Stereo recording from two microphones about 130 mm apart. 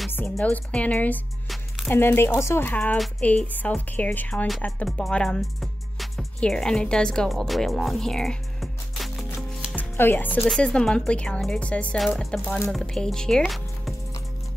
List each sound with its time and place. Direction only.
0.1 s speech: 15° left (ahead or behind)
9.8 s speech: 15° left (ahead or behind)